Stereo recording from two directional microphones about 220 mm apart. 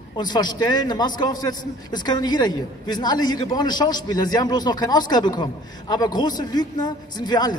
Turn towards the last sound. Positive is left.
turn(degrees=20)  # may be behind; listen again after turning